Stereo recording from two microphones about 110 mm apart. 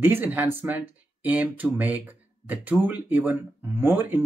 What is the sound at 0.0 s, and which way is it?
Speech, 15° right (ahead or behind).